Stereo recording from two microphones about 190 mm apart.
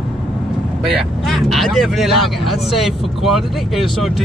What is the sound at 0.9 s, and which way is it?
Speech, centre (ahead or behind).